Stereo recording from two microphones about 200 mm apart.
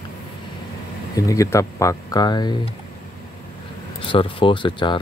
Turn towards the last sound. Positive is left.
turn(degrees=25)  # may be behind; listen again after turning